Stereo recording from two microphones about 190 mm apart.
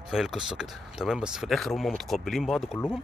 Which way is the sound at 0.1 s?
5° right (ahead or behind).